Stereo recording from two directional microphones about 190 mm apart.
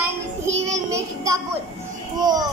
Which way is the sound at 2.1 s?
20° right (ahead or behind).